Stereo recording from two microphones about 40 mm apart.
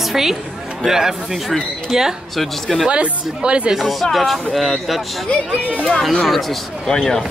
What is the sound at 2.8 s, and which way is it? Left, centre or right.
Speech, right.